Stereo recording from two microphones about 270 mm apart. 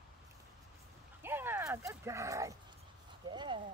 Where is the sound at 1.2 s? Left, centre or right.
Centre.